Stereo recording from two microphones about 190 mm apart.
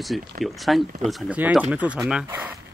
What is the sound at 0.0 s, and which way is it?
Speech, centre (ahead or behind).